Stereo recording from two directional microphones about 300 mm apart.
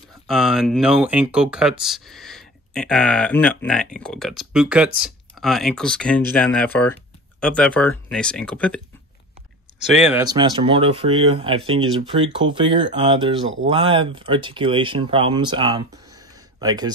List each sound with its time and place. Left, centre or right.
0.3 s speech: centre
9.9 s speech: centre
10.2 s speech: centre